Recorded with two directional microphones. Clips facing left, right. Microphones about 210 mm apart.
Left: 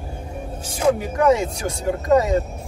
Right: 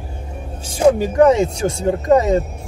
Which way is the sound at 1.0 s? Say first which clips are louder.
Right 5 dB; 30° right (ahead or behind).